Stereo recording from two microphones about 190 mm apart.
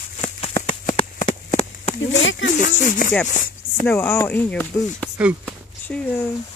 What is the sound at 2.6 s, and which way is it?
Speech, 45° left (ahead or behind).